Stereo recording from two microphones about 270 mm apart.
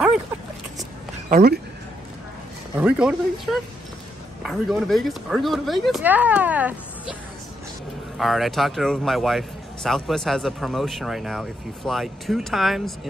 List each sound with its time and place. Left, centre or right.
1.3 s speech: right
2.8 s a man's voice: centre
8.2 s a man's voice: centre